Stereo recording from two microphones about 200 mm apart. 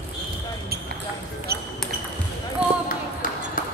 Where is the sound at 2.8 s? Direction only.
45° left (ahead or behind).